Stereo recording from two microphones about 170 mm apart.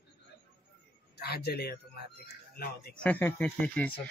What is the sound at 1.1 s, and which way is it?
A man's voice, 70° left (ahead or behind).